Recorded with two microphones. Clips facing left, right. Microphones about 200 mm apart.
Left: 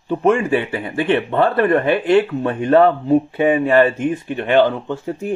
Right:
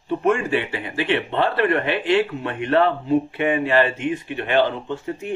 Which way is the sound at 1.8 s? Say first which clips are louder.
Left 5 dB; 50° left (ahead or behind).